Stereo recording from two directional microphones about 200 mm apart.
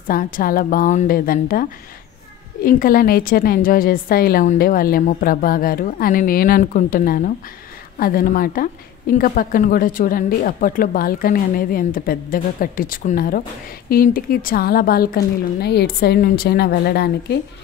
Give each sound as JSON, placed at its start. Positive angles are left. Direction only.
{"t": 0.1, "sound": "a woman's voice", "side_deg": 45}